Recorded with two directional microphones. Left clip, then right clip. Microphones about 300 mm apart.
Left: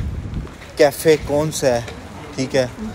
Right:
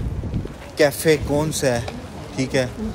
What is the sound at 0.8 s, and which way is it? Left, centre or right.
Speech, centre.